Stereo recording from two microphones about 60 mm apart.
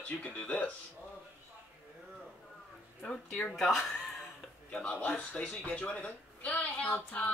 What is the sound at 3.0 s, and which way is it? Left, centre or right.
Speech, centre.